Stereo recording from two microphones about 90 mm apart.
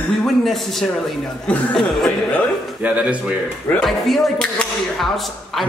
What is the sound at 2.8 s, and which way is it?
Speech, 15° right (ahead or behind).